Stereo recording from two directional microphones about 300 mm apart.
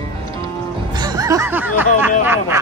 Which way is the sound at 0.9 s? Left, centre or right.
Centre.